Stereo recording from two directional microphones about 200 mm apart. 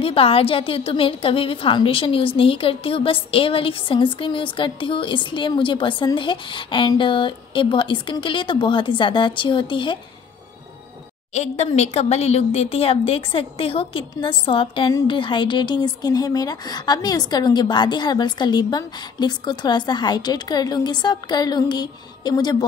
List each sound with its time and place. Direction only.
0.0 s a woman's voice: 30° left (ahead or behind)
11.3 s a woman's voice: 35° left (ahead or behind)